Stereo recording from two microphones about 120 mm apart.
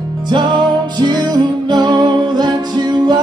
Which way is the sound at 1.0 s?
35° right (ahead or behind).